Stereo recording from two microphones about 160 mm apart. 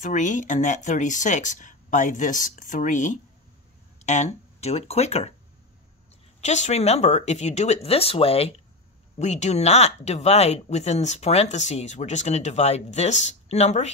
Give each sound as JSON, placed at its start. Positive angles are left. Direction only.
{"t": 0.0, "sound": "speech", "side_deg": 50}
{"t": 6.4, "sound": "speech", "side_deg": 45}